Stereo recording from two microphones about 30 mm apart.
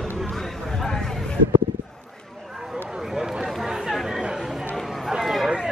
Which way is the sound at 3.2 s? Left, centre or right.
Centre.